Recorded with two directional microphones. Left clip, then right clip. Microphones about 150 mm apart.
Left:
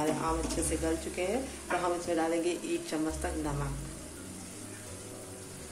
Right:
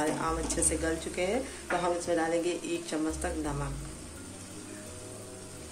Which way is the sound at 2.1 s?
10° right (ahead or behind).